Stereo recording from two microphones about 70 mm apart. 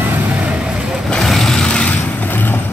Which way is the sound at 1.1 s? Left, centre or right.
Centre.